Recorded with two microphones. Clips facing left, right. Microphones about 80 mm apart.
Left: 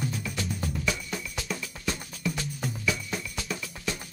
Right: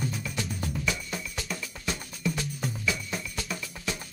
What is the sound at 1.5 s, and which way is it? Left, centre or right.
Music, centre.